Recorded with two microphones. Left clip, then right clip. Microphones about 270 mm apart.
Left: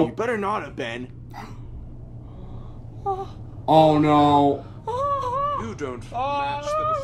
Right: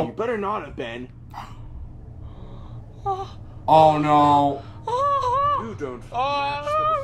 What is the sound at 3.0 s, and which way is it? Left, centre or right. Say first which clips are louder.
Babbling: right 1 dB; centre.